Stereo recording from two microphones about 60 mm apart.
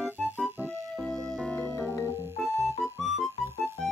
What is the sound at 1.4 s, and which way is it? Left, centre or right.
Music, left.